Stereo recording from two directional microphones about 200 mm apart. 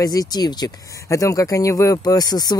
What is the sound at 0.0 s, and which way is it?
Speech, 20° left (ahead or behind).